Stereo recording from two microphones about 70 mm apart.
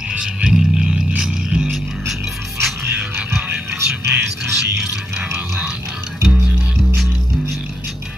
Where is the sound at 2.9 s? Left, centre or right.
Centre.